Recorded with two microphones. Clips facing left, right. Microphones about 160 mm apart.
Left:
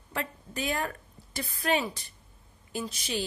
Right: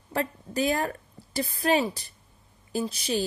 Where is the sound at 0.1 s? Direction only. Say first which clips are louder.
Right 6 dB; 35° right (ahead or behind).